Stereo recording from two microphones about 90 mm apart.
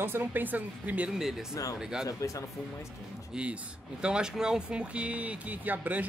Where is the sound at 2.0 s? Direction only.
40° left (ahead or behind).